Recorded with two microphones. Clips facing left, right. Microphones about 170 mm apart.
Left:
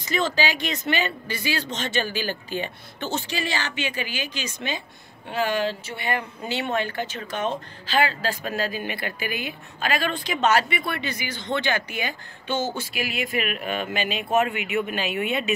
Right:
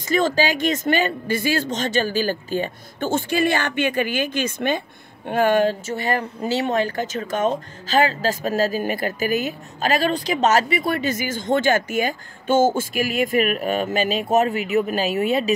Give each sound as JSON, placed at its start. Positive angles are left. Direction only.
{"t": 0.0, "sound": "speech", "side_deg": -45}